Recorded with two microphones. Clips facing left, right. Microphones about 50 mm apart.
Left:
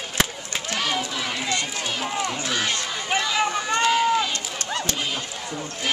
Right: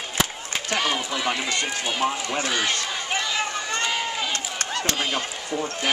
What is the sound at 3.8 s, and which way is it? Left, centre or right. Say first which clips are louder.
Run: left 7 dB; centre.